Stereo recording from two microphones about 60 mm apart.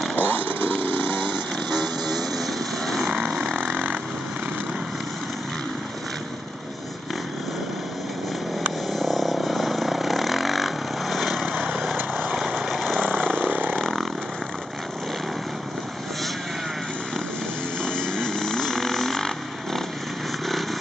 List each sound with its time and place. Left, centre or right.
0.1 s chainsaw: left
2.3 s vehicle: centre
3.1 s vehicle: centre
8.9 s vehicle: centre
11.5 s vehicle: right
12.4 s vehicle: centre
13.4 s vehicle: right
13.7 s vehicle: centre
17.8 s vehicle: centre